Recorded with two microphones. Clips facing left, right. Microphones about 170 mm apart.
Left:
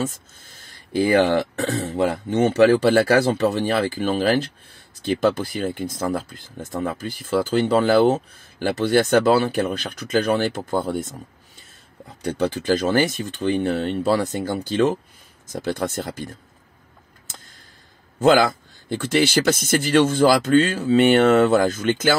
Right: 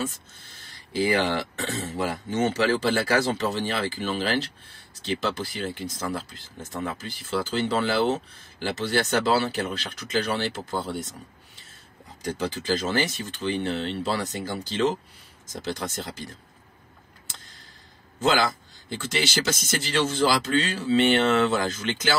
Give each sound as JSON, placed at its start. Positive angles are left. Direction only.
{"t": 0.0, "sound": "speech", "side_deg": 45}
{"t": 12.2, "sound": "speech", "side_deg": 60}
{"t": 18.2, "sound": "speech", "side_deg": 55}